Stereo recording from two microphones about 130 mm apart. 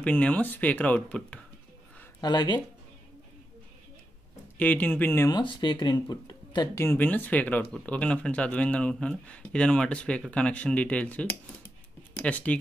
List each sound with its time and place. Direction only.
0.0 s speech: 10° left (ahead or behind)
2.2 s speech: 35° left (ahead or behind)
4.6 s speech: 10° left (ahead or behind)
5.3 s speech: 35° left (ahead or behind)
6.7 s speech: 20° left (ahead or behind)